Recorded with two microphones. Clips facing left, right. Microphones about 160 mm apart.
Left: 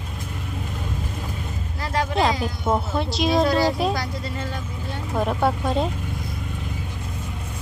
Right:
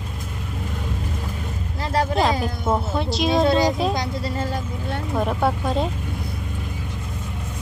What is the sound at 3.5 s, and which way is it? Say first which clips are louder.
Speech: right 2 dB; 20° right (ahead or behind).